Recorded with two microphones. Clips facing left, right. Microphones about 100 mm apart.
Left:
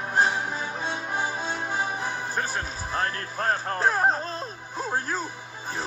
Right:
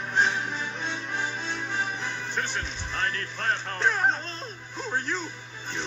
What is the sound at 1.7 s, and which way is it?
Music, 35° left (ahead or behind).